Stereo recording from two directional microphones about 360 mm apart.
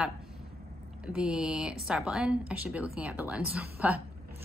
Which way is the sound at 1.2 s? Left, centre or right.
Centre.